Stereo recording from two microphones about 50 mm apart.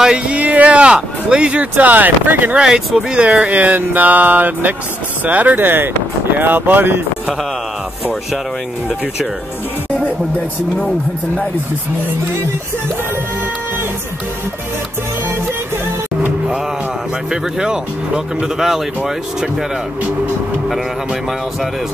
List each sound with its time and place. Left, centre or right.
0.0 s speech: centre; by 2.5 s right
2.5 s speech: centre; by 7.0 s right
17.3 s speech: centre
20.6 s speech: centre